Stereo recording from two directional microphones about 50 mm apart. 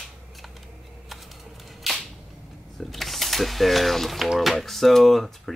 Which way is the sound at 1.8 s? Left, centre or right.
Centre.